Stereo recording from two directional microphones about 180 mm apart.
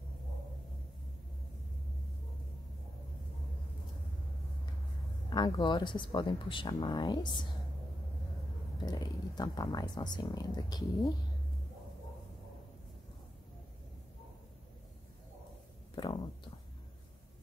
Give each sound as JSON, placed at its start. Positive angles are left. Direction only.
{"t": 5.3, "sound": "speech", "side_deg": 25}
{"t": 8.8, "sound": "speech", "side_deg": 25}
{"t": 15.9, "sound": "a sound", "side_deg": 25}